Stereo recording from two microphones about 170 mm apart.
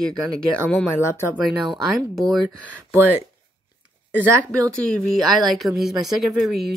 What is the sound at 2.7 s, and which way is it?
Speech, 15° right (ahead or behind).